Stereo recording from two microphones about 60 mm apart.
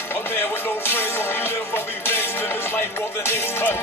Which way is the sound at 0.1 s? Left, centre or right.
Left.